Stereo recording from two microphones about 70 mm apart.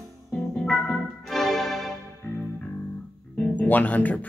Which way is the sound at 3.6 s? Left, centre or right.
Left.